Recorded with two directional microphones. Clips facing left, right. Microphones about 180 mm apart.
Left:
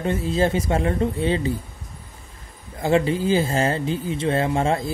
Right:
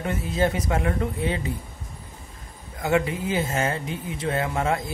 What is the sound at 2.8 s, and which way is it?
A man's voice, 30° left (ahead or behind).